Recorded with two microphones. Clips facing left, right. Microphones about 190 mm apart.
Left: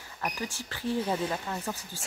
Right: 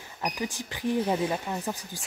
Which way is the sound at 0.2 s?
15° right (ahead or behind).